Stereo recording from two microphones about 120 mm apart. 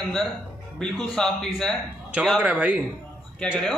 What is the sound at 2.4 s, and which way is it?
Speech, 10° right (ahead or behind).